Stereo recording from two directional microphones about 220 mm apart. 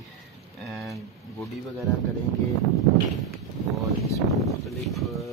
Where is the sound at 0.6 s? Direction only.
Centre (ahead or behind).